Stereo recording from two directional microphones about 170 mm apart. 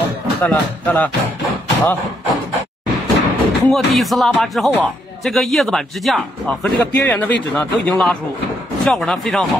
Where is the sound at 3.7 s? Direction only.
Centre (ahead or behind).